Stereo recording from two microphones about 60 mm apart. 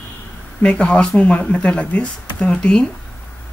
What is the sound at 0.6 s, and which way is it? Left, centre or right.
Speech, left.